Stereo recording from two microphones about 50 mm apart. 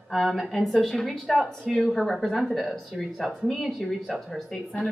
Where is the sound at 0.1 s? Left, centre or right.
Centre.